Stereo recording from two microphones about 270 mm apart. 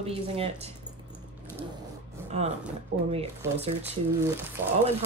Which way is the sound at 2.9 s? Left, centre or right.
Right.